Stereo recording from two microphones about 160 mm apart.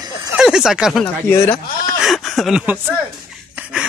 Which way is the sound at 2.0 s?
Centre (ahead or behind).